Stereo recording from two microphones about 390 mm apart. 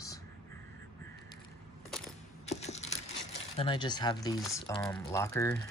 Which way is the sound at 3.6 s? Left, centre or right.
Centre.